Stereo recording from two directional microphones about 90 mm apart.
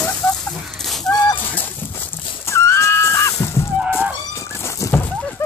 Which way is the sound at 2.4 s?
30° left (ahead or behind).